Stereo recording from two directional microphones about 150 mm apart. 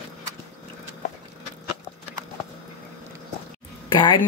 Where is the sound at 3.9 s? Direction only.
35° left (ahead or behind).